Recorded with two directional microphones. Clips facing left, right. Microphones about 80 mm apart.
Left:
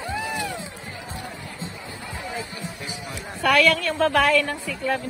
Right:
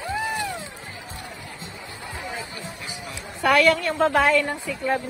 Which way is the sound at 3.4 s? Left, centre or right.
Right.